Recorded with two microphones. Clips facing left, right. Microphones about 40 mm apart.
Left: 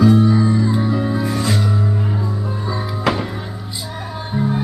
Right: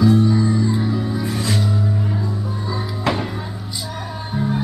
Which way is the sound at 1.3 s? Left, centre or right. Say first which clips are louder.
Left 2 dB; centre.